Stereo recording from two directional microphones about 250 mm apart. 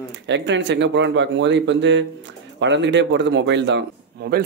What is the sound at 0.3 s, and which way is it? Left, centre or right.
Speech, right.